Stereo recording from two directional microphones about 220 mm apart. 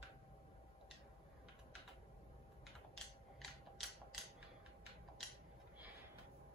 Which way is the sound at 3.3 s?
Centre (ahead or behind).